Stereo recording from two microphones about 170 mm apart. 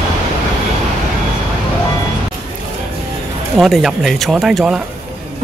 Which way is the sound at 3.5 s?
Centre (ahead or behind).